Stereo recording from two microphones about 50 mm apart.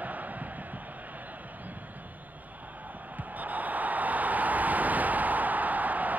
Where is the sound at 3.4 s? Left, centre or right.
Right.